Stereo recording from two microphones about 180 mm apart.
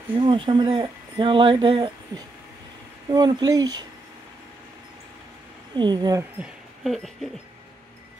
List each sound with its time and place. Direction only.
0.1 s speech: 25° right (ahead or behind)
5.8 s speech: 25° right (ahead or behind)
6.4 s a sound: centre (ahead or behind)